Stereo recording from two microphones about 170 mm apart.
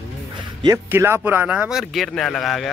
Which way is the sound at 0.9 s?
15° right (ahead or behind).